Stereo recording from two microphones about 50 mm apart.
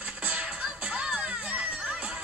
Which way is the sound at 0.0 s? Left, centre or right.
Right.